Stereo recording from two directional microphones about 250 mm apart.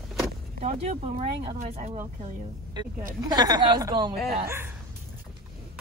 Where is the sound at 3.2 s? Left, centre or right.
Centre.